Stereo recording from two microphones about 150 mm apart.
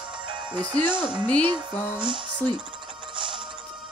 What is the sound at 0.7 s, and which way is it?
Speech, 30° right (ahead or behind).